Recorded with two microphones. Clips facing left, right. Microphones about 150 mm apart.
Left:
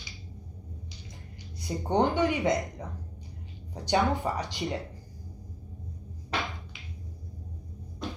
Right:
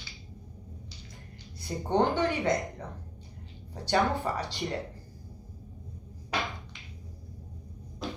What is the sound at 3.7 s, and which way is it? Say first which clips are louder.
Speech: left 1 dB; 15° left (ahead or behind).